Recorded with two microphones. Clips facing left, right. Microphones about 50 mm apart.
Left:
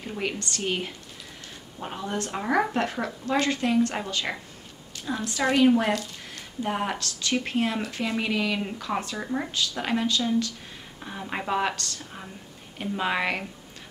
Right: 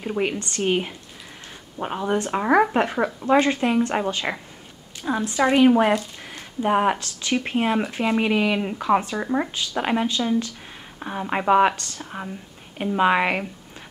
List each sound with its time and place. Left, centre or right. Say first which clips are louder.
0.2 s speech: right 5 dB; right
1.8 s speech: right 7 dB; right